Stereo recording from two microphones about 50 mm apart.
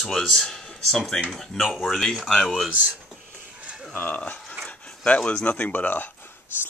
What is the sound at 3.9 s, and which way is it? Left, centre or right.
Speech, left.